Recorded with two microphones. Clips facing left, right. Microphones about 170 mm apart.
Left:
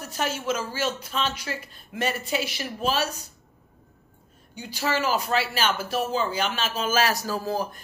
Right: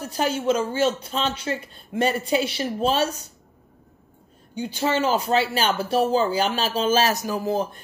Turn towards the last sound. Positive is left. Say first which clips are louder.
# right 4 dB
turn(degrees=-25)  # may be behind; listen again after turning